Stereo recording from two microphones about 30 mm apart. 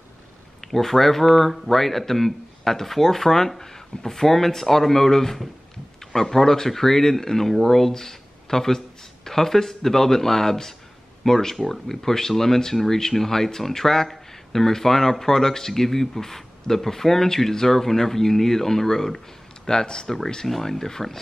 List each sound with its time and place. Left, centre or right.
0.6 s speech: centre
19.7 s speech: left
20.4 s speech: centre